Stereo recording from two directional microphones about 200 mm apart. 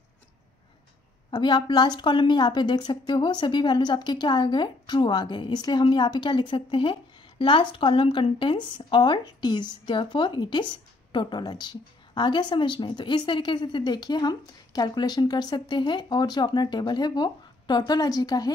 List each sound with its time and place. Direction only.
1.3 s speech: 20° left (ahead or behind)